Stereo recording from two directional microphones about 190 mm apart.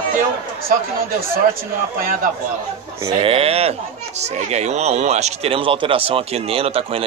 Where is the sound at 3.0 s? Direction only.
30° right (ahead or behind).